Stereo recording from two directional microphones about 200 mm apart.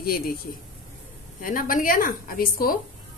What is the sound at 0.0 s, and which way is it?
Speech, 50° left (ahead or behind).